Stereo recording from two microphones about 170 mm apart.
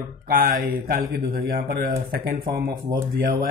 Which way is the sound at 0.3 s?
55° right (ahead or behind).